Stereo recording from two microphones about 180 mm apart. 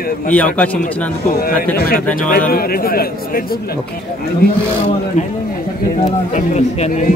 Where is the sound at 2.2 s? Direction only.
55° left (ahead or behind).